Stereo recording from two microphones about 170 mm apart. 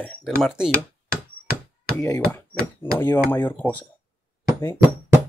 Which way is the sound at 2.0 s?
20° left (ahead or behind).